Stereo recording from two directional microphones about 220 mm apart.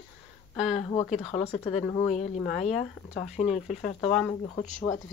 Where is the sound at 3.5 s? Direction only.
35° left (ahead or behind).